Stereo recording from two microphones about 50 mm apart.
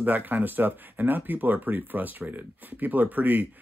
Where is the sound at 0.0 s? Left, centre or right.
Right.